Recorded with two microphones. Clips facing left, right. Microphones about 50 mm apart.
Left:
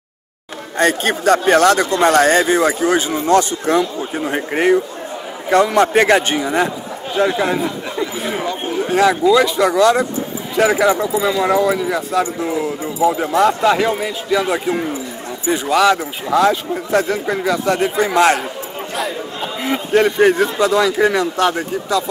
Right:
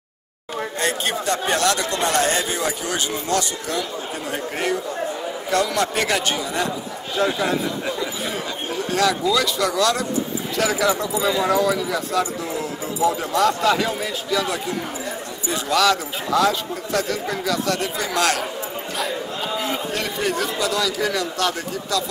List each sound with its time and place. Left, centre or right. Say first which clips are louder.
0.7 s a man's voice: left 9 dB; left
3.1 s a man's voice: left 9 dB; left
7.2 s speech: left 5 dB; centre
19.7 s speech: left 10 dB; left